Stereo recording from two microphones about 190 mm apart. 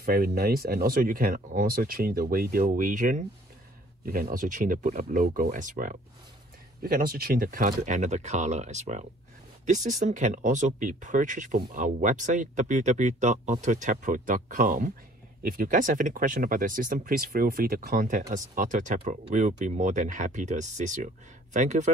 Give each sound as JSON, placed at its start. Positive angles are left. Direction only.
{"t": 0.0, "sound": "speech", "side_deg": -50}